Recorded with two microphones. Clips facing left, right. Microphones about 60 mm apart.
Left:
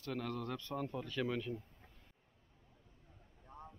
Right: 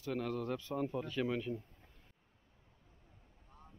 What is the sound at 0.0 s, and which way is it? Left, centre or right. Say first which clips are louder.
A man's voice: right 3 dB; centre.